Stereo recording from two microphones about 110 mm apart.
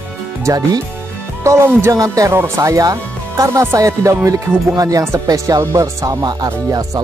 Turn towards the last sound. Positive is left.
turn(degrees=-40)  # may be behind; listen again after turning